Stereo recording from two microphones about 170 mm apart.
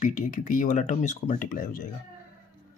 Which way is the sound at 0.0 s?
50° left (ahead or behind).